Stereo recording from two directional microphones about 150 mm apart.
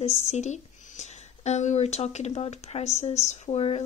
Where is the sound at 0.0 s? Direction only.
45° left (ahead or behind).